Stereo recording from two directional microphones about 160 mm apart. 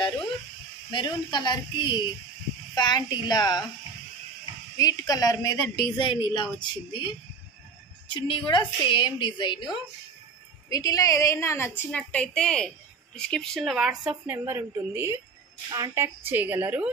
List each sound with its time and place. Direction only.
0.8 s a woman's voice: 30° left (ahead or behind)
4.7 s a woman's voice: 20° left (ahead or behind); by 16.9 s 10° right (ahead or behind)